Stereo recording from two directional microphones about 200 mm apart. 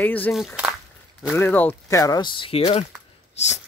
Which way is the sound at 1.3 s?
10° left (ahead or behind).